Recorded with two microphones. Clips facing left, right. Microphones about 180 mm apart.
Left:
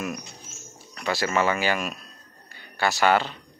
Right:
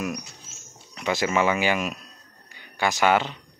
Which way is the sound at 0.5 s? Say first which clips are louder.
Left 4 dB; 20° right (ahead or behind).